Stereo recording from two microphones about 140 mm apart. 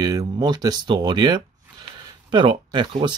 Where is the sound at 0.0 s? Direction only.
25° right (ahead or behind).